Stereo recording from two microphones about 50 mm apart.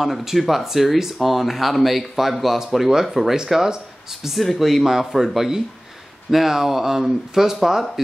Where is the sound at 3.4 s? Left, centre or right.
Centre.